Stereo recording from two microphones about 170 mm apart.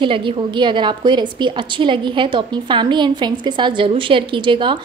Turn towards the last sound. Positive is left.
turn(degrees=-30)  # may be behind; listen again after turning